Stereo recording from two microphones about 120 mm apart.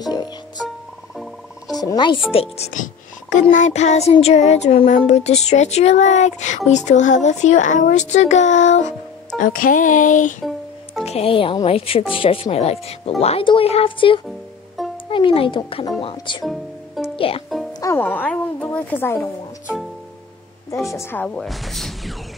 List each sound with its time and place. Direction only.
0.0 s music: 35° left (ahead or behind)
0.6 s music: centre (ahead or behind)
1.8 s speech: 35° left (ahead or behind)
2.3 s speech: 60° left (ahead or behind)
3.3 s speech: 90° left
9.4 s music: 90° left
11.1 s speech: 55° left (ahead or behind)
16.4 s music: centre (ahead or behind)
17.9 s a woman's voice: 15° left (ahead or behind)
20.9 s a woman's voice: 25° left (ahead or behind)
21.2 s speech: 5° left (ahead or behind)